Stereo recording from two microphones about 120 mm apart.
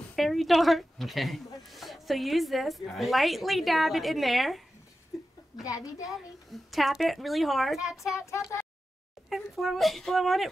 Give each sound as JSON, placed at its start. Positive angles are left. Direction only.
{"t": 0.1, "sound": "a woman's voice", "side_deg": 0}
{"t": 6.0, "sound": "a child's voice", "side_deg": 0}
{"t": 8.1, "sound": "speech", "side_deg": 25}
{"t": 9.3, "sound": "a child's voice", "side_deg": 0}